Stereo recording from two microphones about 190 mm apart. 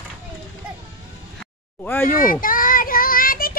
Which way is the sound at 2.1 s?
45° left (ahead or behind).